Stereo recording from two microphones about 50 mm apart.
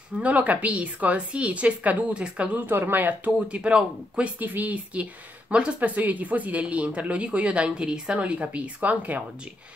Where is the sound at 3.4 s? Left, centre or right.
Right.